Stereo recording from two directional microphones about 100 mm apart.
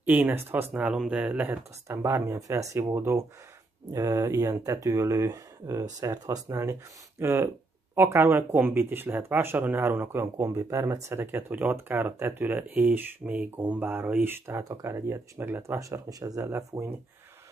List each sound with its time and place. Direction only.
0.0 s speech: 15° right (ahead or behind)
1.9 s speech: 30° right (ahead or behind)
14.6 s speech: 35° right (ahead or behind)
16.4 s speech: 25° right (ahead or behind)